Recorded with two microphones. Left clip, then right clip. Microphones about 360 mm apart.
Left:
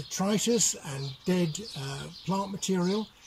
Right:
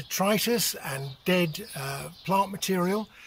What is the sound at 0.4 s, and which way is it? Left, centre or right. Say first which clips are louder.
Speech: even; centre.